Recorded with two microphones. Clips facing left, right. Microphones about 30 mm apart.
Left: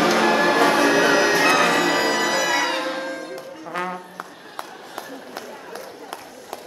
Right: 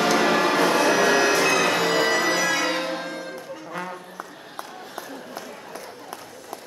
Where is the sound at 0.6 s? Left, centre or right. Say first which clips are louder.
Left 2 dB; centre.